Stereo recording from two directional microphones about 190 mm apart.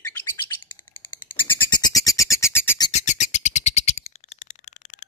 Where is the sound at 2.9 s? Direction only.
40° left (ahead or behind).